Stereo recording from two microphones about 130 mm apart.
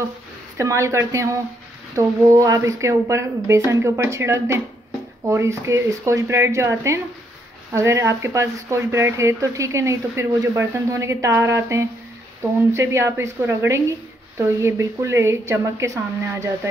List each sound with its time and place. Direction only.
0.6 s speech: 25° right (ahead or behind)